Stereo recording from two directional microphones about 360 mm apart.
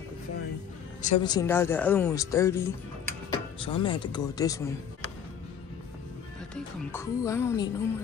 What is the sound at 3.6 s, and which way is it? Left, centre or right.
Speech, centre.